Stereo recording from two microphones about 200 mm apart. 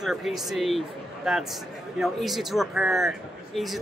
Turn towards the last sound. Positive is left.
turn(degrees=0)  # may be behind; listen again after turning